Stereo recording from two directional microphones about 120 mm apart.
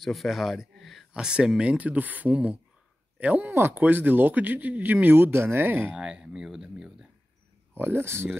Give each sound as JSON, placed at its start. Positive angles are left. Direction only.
{"t": 0.0, "sound": "speech", "side_deg": 0}
{"t": 7.7, "sound": "speech", "side_deg": -20}